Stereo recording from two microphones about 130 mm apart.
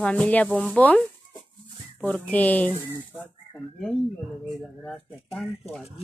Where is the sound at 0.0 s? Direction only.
10° left (ahead or behind).